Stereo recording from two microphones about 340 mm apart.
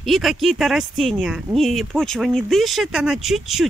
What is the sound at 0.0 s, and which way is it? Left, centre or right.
Speech, centre.